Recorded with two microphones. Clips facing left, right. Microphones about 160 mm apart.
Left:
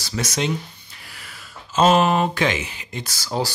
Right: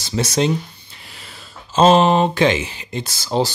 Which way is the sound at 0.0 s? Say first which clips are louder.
Right 6 dB; 25° right (ahead or behind).